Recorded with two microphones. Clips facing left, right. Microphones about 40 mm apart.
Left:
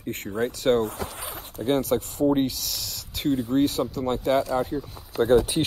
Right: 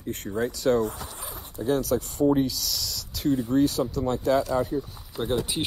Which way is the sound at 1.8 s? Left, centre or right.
Left.